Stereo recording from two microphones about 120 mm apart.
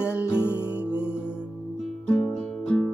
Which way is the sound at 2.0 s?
10° left (ahead or behind).